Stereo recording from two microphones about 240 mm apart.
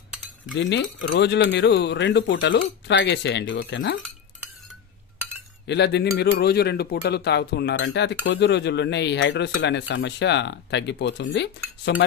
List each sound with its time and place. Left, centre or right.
0.6 s speech: left
5.7 s speech: left